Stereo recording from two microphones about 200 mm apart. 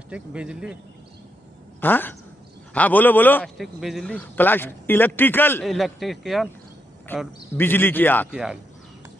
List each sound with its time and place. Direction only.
0.1 s speech: 5° right (ahead or behind)
1.8 s speech: 10° left (ahead or behind)
7.1 s speech: 10° left (ahead or behind)
8.3 s speech: 5° right (ahead or behind)